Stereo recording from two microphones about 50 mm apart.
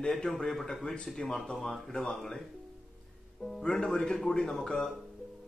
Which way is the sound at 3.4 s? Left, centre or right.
Centre.